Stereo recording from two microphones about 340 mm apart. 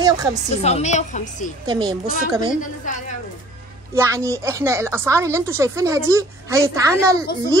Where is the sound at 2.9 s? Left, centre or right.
Left.